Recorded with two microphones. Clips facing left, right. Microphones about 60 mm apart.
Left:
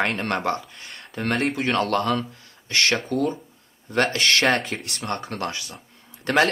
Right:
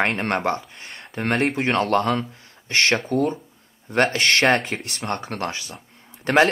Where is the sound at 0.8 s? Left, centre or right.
Centre.